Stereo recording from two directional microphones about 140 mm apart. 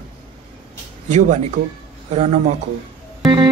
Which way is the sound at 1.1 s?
55° right (ahead or behind).